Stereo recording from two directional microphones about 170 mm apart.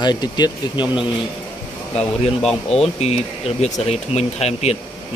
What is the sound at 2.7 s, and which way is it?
Speech, 40° left (ahead or behind).